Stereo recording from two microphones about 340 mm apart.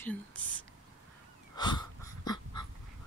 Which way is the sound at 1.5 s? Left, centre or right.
Centre.